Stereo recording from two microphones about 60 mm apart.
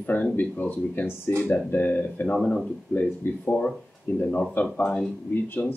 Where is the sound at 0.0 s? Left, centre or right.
Left.